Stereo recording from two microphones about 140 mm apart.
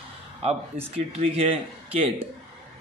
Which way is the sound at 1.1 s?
50° right (ahead or behind).